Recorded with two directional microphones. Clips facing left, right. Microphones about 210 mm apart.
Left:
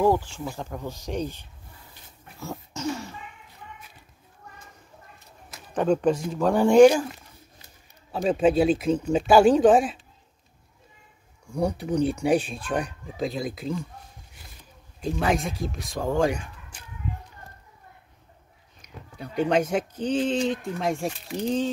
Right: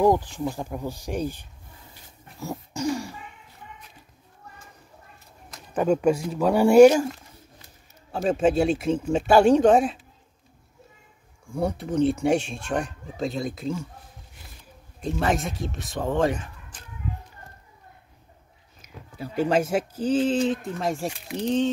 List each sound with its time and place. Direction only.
0.0 s speech: 15° right (ahead or behind)
2.4 s dog: 10° right (ahead or behind)
5.8 s speech: 5° right (ahead or behind)
8.1 s speech: centre (ahead or behind)
11.5 s speech: centre (ahead or behind)
15.0 s speech: centre (ahead or behind)
18.8 s speech: 5° right (ahead or behind)